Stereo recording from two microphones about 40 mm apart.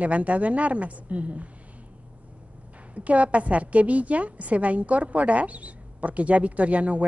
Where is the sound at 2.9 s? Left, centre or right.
Right.